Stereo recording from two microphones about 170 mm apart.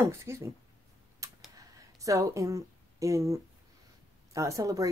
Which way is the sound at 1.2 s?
20° right (ahead or behind).